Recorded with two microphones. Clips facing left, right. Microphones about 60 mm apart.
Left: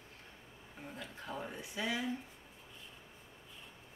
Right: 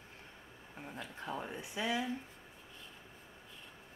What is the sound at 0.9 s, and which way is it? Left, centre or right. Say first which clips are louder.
Speech: right 3 dB; right.